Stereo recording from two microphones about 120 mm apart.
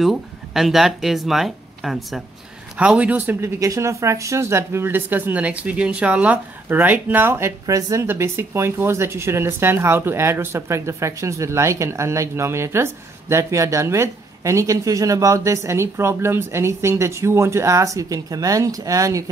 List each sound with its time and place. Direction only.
0.0 s speech: centre (ahead or behind); by 19.2 s 30° right (ahead or behind)